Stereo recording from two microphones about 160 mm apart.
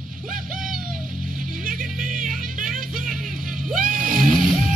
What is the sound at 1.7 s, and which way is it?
Music, 60° right (ahead or behind).